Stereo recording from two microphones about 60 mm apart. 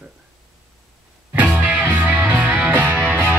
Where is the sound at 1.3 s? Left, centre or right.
Right.